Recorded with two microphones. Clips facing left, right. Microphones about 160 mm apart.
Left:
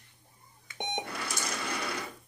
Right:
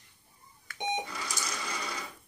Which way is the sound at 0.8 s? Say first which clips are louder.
Right 2 dB; 60° left (ahead or behind).